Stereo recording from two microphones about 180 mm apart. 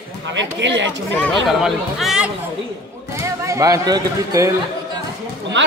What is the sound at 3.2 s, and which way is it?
Speech, 15° right (ahead or behind).